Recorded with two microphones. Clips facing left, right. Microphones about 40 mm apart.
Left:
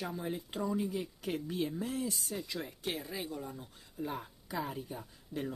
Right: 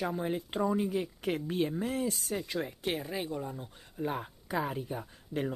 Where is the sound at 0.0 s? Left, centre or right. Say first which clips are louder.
Right 5 dB; right.